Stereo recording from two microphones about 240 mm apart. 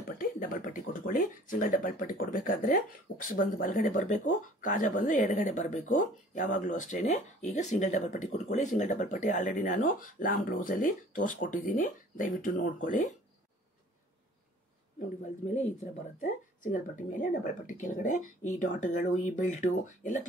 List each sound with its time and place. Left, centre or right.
0.2 s speech: left
15.5 s speech: left